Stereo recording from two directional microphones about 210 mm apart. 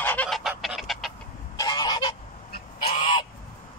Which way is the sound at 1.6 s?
20° left (ahead or behind).